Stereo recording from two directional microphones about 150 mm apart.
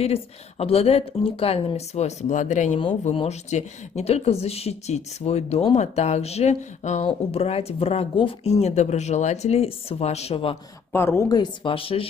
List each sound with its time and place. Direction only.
0.0 s speech: 40° left (ahead or behind)
10.9 s speech: 15° left (ahead or behind); by 12.1 s 40° left (ahead or behind)